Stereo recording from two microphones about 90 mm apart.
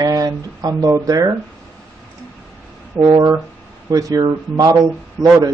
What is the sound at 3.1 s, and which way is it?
Speech, 40° right (ahead or behind).